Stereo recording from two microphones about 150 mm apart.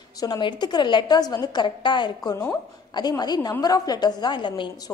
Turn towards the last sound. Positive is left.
turn(degrees=30)  # may be behind; listen again after turning